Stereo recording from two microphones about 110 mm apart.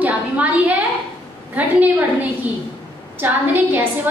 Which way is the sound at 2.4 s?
15° right (ahead or behind).